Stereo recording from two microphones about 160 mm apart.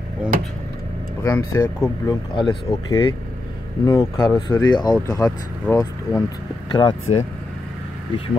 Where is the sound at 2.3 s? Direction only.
30° left (ahead or behind).